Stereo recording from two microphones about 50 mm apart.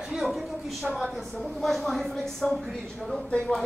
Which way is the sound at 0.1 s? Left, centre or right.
Centre.